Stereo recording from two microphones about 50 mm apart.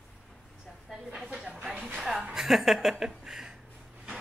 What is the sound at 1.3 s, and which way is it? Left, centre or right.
Hiss, centre.